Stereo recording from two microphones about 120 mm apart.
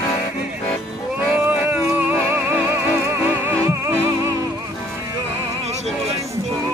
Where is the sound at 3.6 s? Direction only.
25° right (ahead or behind).